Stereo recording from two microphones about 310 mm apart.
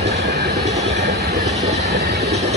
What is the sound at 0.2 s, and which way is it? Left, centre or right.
Train, right.